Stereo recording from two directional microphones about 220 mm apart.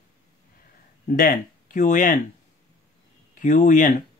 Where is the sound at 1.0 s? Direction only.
40° left (ahead or behind).